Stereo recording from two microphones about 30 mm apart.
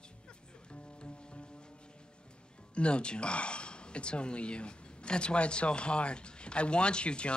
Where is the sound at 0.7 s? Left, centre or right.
Left.